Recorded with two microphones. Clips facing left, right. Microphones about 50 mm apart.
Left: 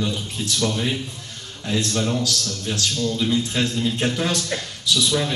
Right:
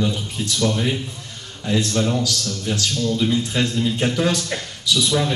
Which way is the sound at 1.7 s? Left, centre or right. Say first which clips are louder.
Right 2 dB; centre.